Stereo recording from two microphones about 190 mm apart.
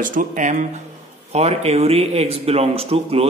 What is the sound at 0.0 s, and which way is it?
A man's voice, 45° right (ahead or behind).